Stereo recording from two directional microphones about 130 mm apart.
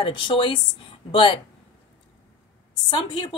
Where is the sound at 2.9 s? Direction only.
40° left (ahead or behind).